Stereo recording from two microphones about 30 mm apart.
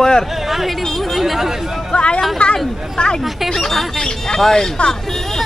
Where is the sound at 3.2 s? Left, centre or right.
Centre.